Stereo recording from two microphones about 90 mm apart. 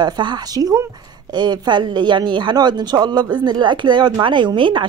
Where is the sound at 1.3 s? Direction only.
55° right (ahead or behind).